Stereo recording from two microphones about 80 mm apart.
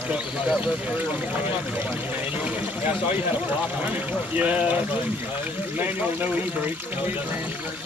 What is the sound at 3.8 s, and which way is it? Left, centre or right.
Speech, centre.